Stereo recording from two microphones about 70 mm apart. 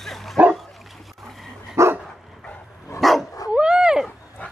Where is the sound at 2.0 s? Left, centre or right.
Centre.